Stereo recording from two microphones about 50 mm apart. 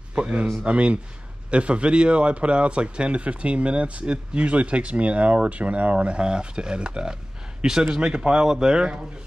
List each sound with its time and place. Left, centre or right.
0.1 s a man's voice: right